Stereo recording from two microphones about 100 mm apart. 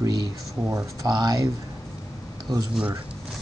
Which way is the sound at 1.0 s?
45° right (ahead or behind).